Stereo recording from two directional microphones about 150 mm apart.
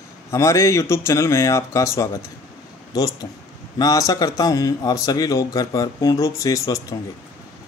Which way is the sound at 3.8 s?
25° left (ahead or behind).